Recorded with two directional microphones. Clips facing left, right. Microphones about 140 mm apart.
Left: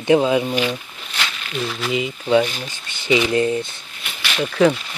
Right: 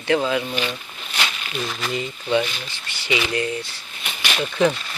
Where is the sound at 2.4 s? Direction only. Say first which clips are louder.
Left 4 dB; 45° left (ahead or behind).